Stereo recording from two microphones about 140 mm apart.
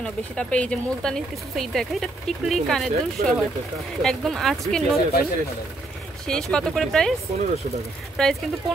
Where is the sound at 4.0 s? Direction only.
Centre (ahead or behind).